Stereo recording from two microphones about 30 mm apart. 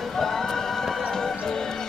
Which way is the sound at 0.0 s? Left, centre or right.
Centre.